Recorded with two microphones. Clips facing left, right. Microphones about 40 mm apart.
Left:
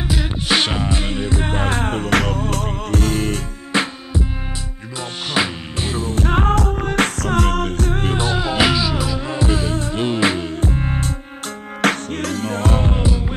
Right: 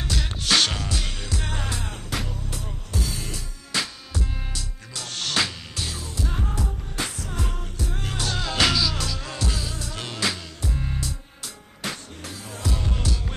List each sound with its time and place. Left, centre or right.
0.0 s music: centre; by 3.3 s left
3.7 s music: left
5.3 s music: left
6.2 s music: left
8.0 s music: left
11.8 s music: left
13.0 s music: left